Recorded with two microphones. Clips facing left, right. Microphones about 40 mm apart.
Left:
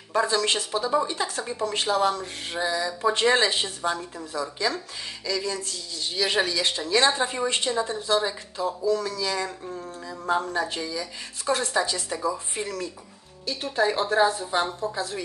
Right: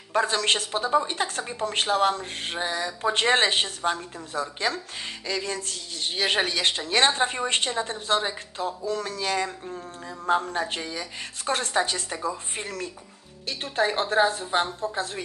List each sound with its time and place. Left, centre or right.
0.1 s speech: right